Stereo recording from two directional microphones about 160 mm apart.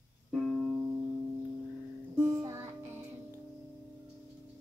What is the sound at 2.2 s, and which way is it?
Music, 15° right (ahead or behind).